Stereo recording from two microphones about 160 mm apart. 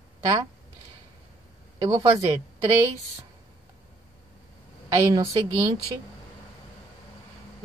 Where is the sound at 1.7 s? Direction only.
20° right (ahead or behind).